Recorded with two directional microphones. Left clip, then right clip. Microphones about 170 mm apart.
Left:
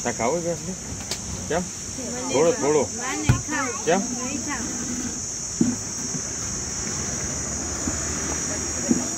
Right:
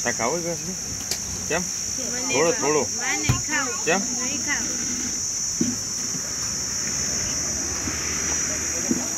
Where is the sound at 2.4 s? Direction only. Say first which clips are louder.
Left 2 dB; 5° right (ahead or behind).